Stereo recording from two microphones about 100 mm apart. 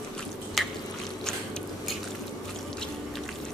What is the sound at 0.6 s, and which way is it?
Drip, centre (ahead or behind).